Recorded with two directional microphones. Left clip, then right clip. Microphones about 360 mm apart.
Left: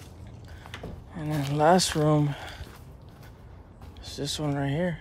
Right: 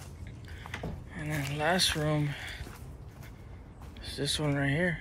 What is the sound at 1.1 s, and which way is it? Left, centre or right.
Speech, centre.